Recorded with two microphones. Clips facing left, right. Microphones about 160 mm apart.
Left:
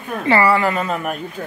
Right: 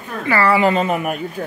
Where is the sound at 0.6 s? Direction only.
20° right (ahead or behind).